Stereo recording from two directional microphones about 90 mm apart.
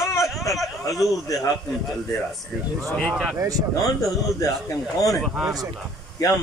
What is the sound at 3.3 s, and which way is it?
Speech, 35° right (ahead or behind).